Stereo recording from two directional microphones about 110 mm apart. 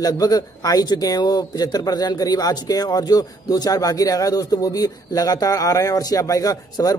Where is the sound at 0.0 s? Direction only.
35° left (ahead or behind).